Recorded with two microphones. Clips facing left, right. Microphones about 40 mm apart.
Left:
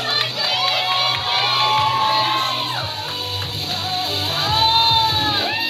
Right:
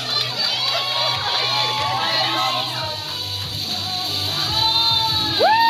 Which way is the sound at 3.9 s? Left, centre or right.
Left.